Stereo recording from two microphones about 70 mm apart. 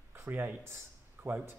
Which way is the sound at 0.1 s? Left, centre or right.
Right.